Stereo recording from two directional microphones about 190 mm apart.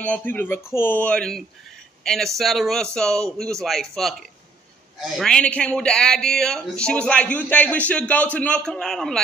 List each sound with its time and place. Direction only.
0.0 s speech: 10° left (ahead or behind)